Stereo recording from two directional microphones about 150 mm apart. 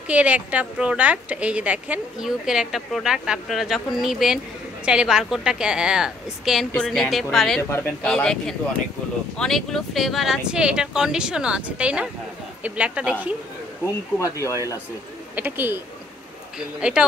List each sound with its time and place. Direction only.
0.1 s a woman's voice: 10° right (ahead or behind)
7.7 s speech: 15° left (ahead or behind)
8.1 s a woman's voice: 5° left (ahead or behind)
14.2 s speech: 20° left (ahead or behind)
15.3 s a woman's voice: 15° right (ahead or behind)